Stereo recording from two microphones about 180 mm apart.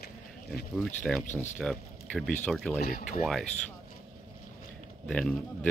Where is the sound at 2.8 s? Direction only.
55° left (ahead or behind).